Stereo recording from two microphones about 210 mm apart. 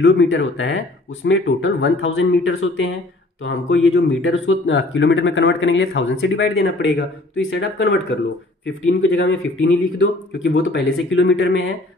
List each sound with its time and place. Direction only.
0.0 s speech: 60° left (ahead or behind)
9.0 s speech: 60° left (ahead or behind)